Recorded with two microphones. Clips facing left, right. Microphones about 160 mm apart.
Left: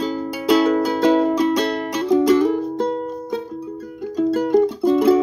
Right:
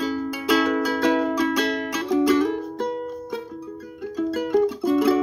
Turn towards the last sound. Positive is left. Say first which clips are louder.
# left 4 dB
turn(degrees=35)  # may be behind; listen again after turning